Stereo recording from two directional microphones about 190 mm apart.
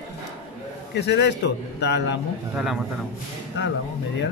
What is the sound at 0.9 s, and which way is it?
A man's voice, 60° left (ahead or behind).